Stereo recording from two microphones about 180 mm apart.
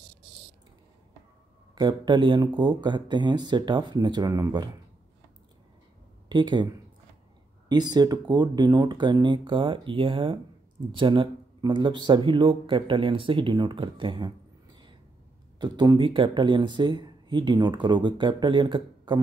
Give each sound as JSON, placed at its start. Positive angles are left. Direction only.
{"t": 1.8, "sound": "speech", "side_deg": -25}
{"t": 6.2, "sound": "speech", "side_deg": -25}
{"t": 15.6, "sound": "speech", "side_deg": -25}